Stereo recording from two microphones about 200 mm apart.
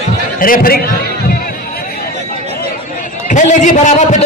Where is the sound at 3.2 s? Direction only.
40° left (ahead or behind).